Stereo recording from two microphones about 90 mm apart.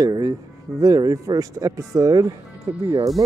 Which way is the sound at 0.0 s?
40° right (ahead or behind).